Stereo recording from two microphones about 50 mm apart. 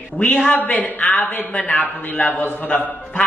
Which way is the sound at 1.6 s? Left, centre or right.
Left.